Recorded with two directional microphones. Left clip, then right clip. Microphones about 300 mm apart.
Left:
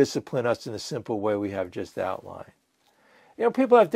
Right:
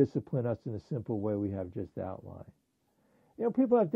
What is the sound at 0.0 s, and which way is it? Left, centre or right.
Speech, centre.